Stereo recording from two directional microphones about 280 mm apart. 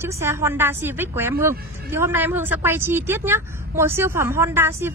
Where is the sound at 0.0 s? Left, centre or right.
Centre.